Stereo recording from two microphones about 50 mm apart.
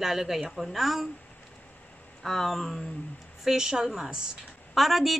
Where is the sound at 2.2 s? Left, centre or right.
Centre.